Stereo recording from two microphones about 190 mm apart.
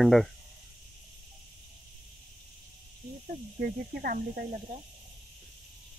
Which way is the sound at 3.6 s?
50° right (ahead or behind).